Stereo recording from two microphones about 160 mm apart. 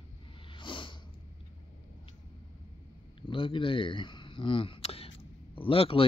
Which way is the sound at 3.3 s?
35° left (ahead or behind).